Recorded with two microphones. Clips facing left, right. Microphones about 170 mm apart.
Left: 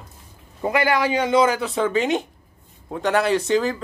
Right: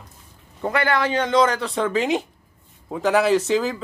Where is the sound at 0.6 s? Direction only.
10° left (ahead or behind).